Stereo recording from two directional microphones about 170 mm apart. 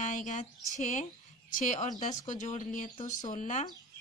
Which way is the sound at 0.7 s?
50° left (ahead or behind).